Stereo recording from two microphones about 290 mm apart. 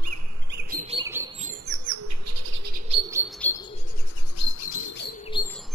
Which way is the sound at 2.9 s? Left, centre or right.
Centre.